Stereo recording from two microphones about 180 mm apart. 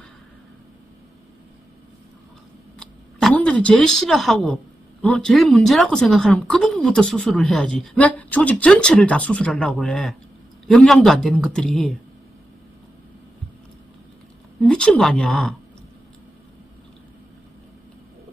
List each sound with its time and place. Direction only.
2.8 s a sound: centre (ahead or behind)
5.0 s speech: 5° left (ahead or behind)
14.6 s speech: 5° left (ahead or behind)